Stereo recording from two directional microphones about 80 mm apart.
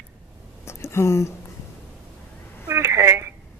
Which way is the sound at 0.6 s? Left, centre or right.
Left.